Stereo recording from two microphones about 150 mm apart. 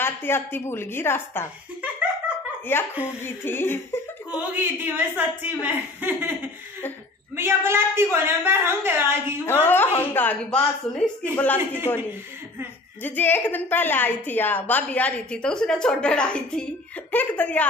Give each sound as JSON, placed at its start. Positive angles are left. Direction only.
{"t": 0.0, "sound": "a woman's voice", "side_deg": 15}
{"t": 2.7, "sound": "a woman's voice", "side_deg": 15}
{"t": 4.3, "sound": "a woman's voice", "side_deg": -10}
{"t": 7.3, "sound": "a woman's voice", "side_deg": -15}
{"t": 9.5, "sound": "a woman's voice", "side_deg": 15}
{"t": 11.5, "sound": "a woman's voice", "side_deg": -15}
{"t": 13.0, "sound": "a woman's voice", "side_deg": 15}